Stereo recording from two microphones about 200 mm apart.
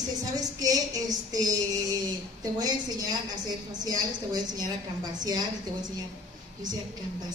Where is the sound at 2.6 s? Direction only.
20° right (ahead or behind).